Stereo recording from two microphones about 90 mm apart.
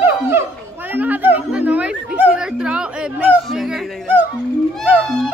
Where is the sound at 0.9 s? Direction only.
20° right (ahead or behind).